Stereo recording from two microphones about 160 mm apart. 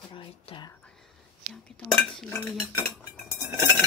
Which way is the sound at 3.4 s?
15° right (ahead or behind).